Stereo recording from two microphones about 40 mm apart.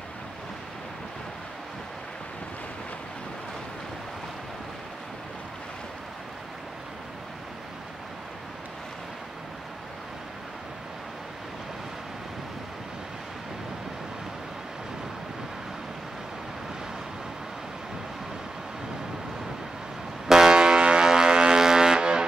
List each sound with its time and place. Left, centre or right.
20.2 s vehicle: centre